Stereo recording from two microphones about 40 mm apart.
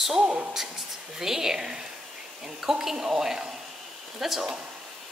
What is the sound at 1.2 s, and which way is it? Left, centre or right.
Speech, centre.